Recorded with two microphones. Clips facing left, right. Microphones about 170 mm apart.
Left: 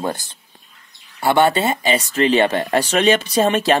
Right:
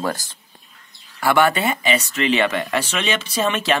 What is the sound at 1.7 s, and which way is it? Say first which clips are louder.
Speech: left 2 dB; 40° left (ahead or behind).